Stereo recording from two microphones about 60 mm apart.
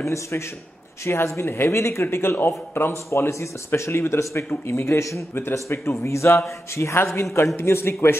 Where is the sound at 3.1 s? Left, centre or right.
Left.